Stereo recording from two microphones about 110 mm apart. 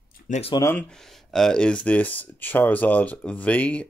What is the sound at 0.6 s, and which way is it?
Speech, 20° left (ahead or behind).